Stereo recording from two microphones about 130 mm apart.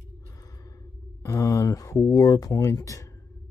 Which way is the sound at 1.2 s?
25° left (ahead or behind).